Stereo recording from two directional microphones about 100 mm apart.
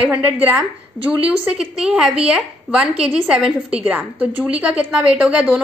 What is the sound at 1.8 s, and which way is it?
A woman's voice, 10° right (ahead or behind).